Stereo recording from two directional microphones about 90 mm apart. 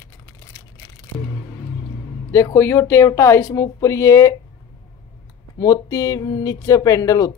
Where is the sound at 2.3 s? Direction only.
25° left (ahead or behind).